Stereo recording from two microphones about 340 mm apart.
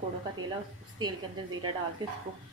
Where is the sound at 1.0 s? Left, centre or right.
Centre.